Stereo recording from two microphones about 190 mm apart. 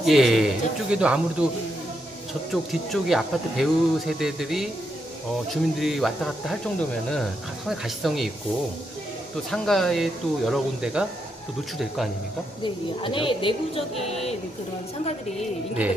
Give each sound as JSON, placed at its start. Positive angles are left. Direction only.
{"t": 0.0, "sound": "speech", "side_deg": 0}
{"t": 2.5, "sound": "speech", "side_deg": 0}
{"t": 9.5, "sound": "speech", "side_deg": 0}
{"t": 13.0, "sound": "speech", "side_deg": 25}